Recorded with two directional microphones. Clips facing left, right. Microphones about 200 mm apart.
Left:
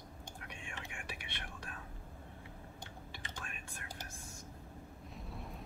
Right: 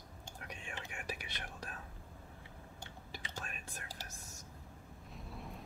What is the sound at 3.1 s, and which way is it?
Whispering, 40° right (ahead or behind).